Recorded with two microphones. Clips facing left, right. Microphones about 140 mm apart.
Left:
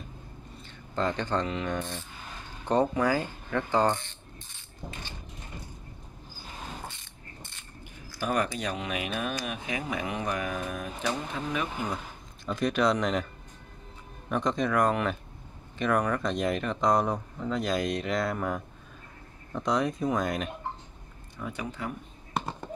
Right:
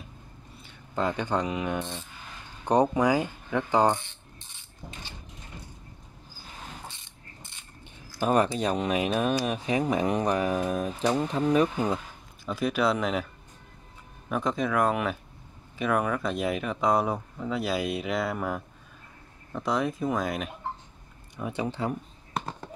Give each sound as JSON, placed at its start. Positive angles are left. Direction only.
{"t": 0.9, "sound": "mechanisms", "side_deg": -10}
{"t": 8.3, "sound": "speech", "side_deg": -35}
{"t": 12.4, "sound": "speech", "side_deg": -5}
{"t": 14.3, "sound": "speech", "side_deg": -5}
{"t": 21.4, "sound": "speech", "side_deg": -25}